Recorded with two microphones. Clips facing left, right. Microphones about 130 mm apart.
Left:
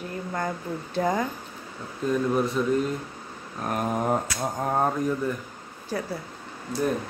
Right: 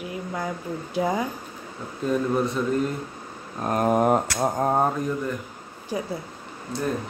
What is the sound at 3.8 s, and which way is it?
Speech, 65° right (ahead or behind).